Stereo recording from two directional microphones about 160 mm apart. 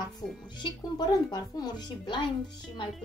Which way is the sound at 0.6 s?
25° left (ahead or behind).